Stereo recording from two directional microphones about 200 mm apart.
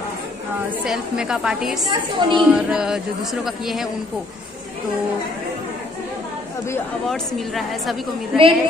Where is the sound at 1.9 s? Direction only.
25° right (ahead or behind).